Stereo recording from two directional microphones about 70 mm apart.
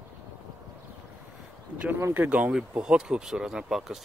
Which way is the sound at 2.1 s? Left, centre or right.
Right.